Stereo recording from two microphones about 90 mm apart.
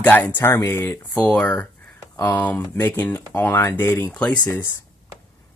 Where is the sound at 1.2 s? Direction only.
15° left (ahead or behind).